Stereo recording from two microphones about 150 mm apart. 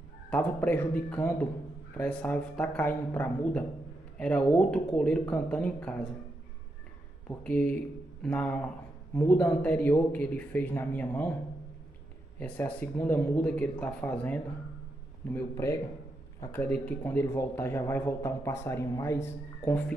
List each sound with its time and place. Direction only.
0.3 s speech: 10° left (ahead or behind)
7.2 s speech: 10° left (ahead or behind)
12.4 s speech: 10° left (ahead or behind)